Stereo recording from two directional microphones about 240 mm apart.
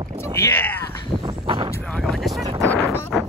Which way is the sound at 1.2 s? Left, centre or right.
Right.